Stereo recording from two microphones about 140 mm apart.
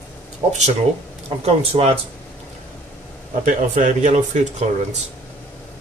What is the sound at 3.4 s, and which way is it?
Speech, 65° right (ahead or behind).